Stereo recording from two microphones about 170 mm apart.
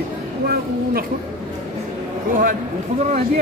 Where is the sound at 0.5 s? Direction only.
60° right (ahead or behind).